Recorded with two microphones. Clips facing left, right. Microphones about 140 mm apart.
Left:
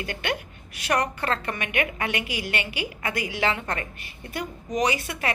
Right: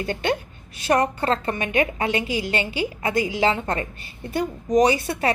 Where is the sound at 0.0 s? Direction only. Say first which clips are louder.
Right 6 dB; 25° right (ahead or behind).